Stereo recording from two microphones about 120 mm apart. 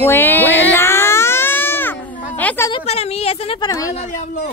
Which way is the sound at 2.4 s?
15° left (ahead or behind).